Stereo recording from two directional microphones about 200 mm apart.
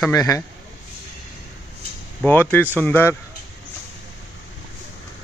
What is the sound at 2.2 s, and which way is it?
Speech, 10° left (ahead or behind).